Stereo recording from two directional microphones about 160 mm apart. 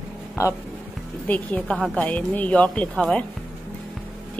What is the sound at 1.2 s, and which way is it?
A woman's voice, 10° left (ahead or behind).